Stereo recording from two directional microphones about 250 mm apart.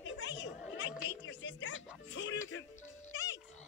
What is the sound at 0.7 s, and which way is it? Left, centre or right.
Music, left.